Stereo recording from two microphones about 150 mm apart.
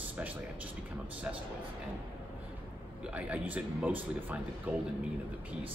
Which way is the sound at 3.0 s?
10° right (ahead or behind).